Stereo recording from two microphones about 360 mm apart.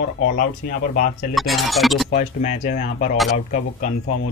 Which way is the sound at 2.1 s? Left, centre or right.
Centre.